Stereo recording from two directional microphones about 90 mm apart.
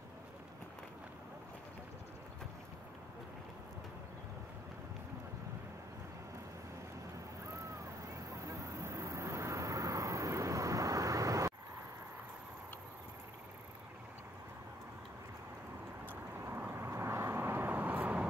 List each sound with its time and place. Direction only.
8.5 s vehicle: 35° right (ahead or behind)
16.3 s vehicle: 25° right (ahead or behind)